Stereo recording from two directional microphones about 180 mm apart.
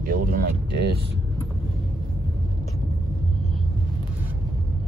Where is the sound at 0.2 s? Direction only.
50° right (ahead or behind).